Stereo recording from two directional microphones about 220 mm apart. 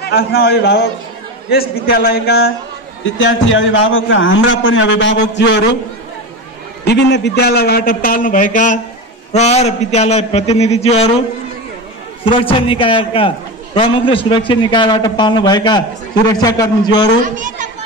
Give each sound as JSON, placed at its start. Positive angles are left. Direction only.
{"t": 0.1, "sound": "a man's voice", "side_deg": 45}
{"t": 3.0, "sound": "a man's voice", "side_deg": 60}
{"t": 6.9, "sound": "a man's voice", "side_deg": 50}
{"t": 12.3, "sound": "a man's voice", "side_deg": 25}
{"t": 17.2, "sound": "a child's voice", "side_deg": -35}